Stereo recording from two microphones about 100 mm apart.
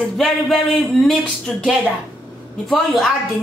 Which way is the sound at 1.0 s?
Centre (ahead or behind).